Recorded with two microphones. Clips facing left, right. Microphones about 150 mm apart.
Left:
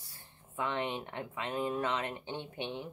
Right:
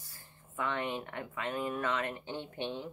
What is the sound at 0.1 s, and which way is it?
Speech, 20° left (ahead or behind).